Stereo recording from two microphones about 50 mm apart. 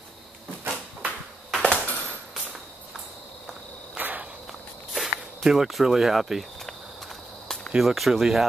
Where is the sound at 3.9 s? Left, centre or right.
Right.